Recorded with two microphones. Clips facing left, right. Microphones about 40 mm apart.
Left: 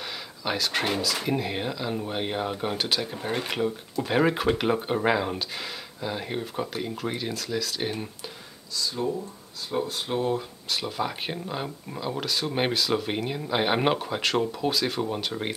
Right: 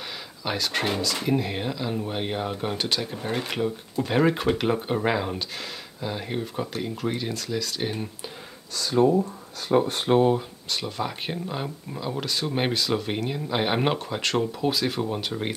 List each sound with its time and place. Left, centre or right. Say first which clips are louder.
0.5 s speech: even; centre
8.7 s speech: right 8 dB; right
10.7 s speech: even; centre